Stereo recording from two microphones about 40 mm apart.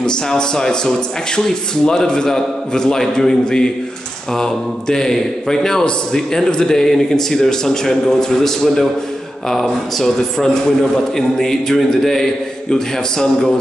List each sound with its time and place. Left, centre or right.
0.0 s speech: centre